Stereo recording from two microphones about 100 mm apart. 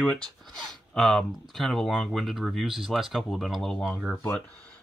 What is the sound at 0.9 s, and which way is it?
Speech, centre (ahead or behind).